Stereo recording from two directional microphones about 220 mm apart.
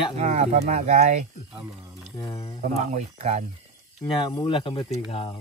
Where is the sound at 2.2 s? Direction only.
20° left (ahead or behind).